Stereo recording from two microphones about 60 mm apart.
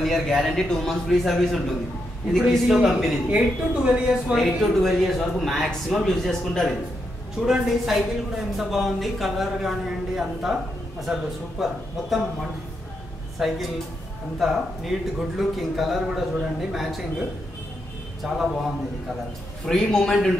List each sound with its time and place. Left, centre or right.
0.0 s a man's voice: centre
3.3 s a woman's voice: centre
4.4 s a man's voice: centre
7.4 s a woman's voice: centre
18.2 s a man's voice: centre
19.6 s a man's voice: centre